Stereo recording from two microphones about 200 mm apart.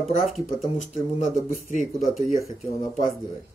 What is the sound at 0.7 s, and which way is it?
Speech, 40° left (ahead or behind).